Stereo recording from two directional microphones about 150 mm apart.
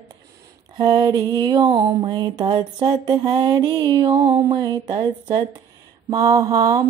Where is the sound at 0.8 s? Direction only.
25° right (ahead or behind).